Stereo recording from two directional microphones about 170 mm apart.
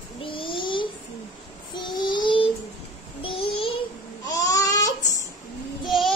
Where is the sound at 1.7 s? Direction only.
25° left (ahead or behind).